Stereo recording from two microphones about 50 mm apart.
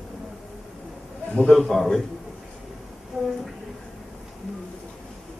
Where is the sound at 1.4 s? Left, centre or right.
Centre.